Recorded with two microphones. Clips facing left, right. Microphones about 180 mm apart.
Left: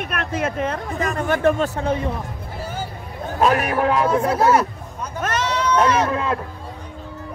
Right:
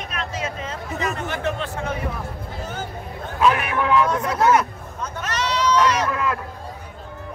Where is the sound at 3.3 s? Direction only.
40° left (ahead or behind).